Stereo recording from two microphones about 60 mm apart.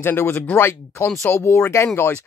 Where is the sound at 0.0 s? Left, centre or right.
Left.